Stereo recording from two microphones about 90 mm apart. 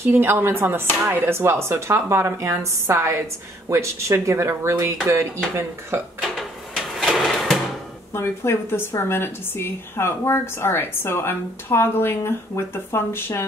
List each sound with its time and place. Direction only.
0.0 s speech: 25° right (ahead or behind)
6.3 s music: centre (ahead or behind)
8.1 s a woman's voice: 25° left (ahead or behind)